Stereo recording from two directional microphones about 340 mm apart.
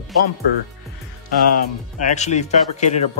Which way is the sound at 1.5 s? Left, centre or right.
Left.